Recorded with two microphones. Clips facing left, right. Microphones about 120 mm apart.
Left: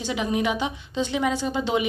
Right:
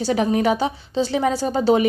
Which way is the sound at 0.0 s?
40° right (ahead or behind).